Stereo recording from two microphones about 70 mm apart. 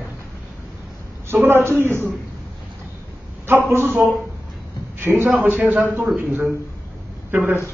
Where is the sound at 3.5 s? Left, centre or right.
Right.